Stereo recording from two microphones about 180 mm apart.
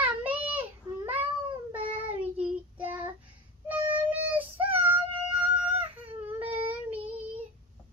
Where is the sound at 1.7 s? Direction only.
30° right (ahead or behind).